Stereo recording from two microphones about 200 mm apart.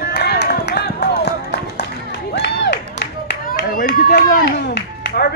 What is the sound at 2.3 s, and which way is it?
Crowd, 60° left (ahead or behind).